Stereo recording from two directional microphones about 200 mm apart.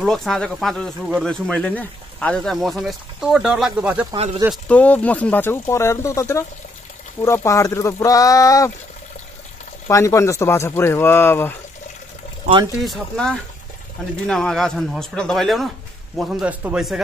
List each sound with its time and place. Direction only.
0.0 s speech: centre (ahead or behind)
4.5 s speech: 5° left (ahead or behind)
9.8 s speech: 15° left (ahead or behind)
12.8 s speech: centre (ahead or behind)